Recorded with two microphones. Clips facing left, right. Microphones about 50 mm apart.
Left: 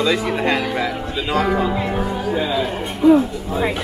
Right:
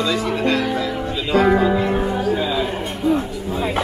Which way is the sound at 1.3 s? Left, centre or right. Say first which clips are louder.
Right 4 dB; centre.